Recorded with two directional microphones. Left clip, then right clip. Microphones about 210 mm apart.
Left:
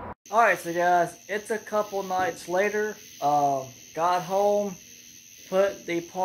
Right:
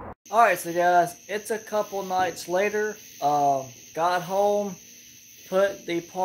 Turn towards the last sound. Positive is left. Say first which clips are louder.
# right 1 dB
turn(degrees=-15)  # may be behind; listen again after turning